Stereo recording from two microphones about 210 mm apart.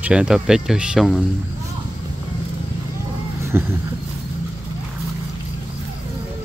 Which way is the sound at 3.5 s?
10° right (ahead or behind).